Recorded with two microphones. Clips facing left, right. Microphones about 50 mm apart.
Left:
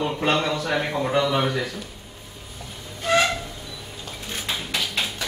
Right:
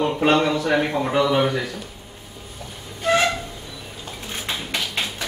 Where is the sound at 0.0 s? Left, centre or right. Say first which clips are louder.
Right 4 dB; centre.